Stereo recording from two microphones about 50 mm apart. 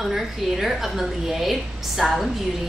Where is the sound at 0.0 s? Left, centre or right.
Centre.